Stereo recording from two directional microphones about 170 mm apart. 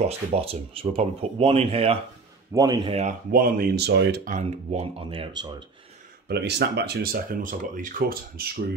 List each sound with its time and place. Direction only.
0.0 s speech: 35° right (ahead or behind)
2.5 s speech: 20° right (ahead or behind)
2.9 s speech: 40° right (ahead or behind)
3.3 s speech: 60° right (ahead or behind); by 4.2 s 85° right
4.2 s speech: 50° right (ahead or behind); by 5.3 s 30° right (ahead or behind)
6.2 s speech: 75° right (ahead or behind); by 8.6 s 60° right (ahead or behind)